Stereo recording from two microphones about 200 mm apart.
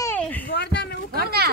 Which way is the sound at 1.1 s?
50° right (ahead or behind).